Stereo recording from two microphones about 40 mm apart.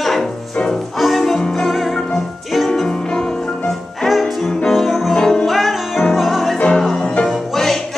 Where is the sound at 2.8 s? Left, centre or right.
Centre.